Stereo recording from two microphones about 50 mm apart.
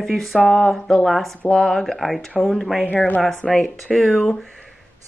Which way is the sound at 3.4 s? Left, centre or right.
Centre.